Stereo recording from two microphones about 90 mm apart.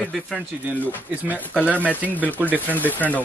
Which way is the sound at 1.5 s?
20° left (ahead or behind).